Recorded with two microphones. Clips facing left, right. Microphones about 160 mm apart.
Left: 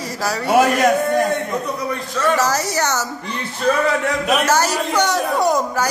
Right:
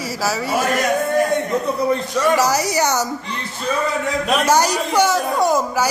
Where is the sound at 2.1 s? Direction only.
10° right (ahead or behind).